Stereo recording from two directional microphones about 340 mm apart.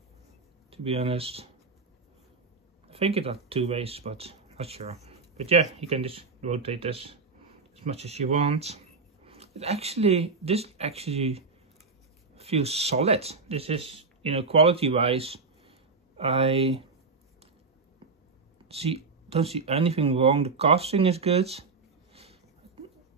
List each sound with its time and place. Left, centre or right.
0.7 s speech: centre
2.9 s speech: centre
18.7 s speech: centre
22.1 s a sound: centre